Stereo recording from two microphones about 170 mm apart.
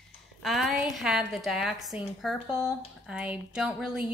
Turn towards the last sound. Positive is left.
turn(degrees=-5)  # may be behind; listen again after turning